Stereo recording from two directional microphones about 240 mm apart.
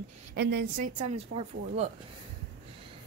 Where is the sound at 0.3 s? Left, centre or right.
Right.